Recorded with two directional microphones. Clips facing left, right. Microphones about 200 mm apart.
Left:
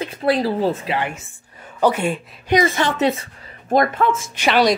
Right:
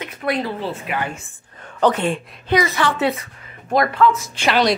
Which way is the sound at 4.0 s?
25° left (ahead or behind).